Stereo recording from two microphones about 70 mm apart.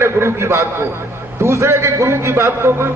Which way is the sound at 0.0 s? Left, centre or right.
Right.